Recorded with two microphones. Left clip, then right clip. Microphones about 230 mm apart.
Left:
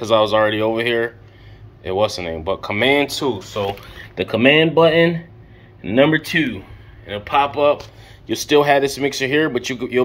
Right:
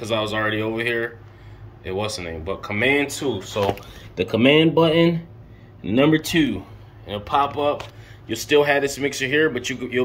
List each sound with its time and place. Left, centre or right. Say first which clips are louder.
0.0 s speech: left 8 dB; centre
4.2 s speech: left 2 dB; centre
4.8 s speech: left 4 dB; right
5.8 s speech: left 3 dB; centre
8.3 s speech: left 3 dB; centre